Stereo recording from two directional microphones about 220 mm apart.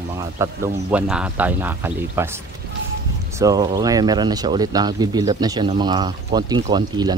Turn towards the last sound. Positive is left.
turn(degrees=-20)  # may be behind; listen again after turning